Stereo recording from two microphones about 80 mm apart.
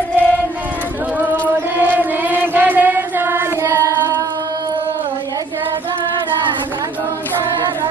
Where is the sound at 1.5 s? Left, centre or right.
Right.